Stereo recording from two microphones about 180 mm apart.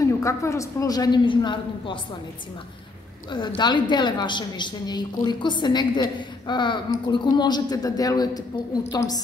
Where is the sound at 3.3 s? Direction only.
25° left (ahead or behind).